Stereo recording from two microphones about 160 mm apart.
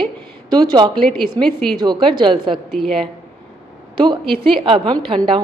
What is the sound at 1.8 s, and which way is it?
Speech, 30° right (ahead or behind).